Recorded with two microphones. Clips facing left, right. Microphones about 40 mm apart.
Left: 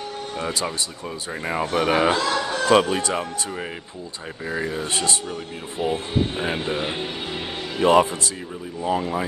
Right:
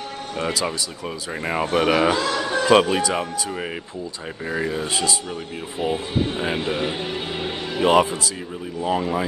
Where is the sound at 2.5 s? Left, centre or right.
Right.